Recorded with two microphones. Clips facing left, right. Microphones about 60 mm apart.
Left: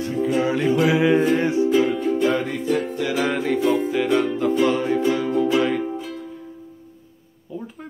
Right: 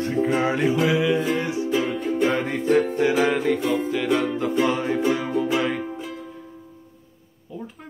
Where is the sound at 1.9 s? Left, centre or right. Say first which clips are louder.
Left 3 dB; centre.